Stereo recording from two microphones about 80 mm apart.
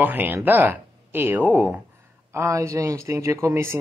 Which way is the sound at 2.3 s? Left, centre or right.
Right.